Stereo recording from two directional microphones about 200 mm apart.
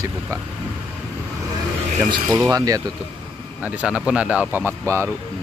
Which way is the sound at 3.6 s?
5° right (ahead or behind).